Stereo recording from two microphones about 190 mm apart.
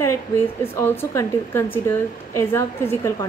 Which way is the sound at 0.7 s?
15° left (ahead or behind).